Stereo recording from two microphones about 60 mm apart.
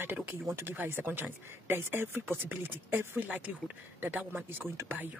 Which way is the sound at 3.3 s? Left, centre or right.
Right.